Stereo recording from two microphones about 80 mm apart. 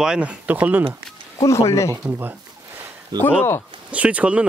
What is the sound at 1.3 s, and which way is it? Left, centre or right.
Speech, left.